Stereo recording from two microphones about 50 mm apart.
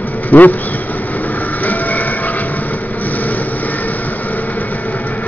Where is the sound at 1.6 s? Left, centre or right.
Left.